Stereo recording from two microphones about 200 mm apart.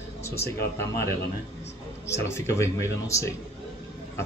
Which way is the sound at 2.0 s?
15° left (ahead or behind).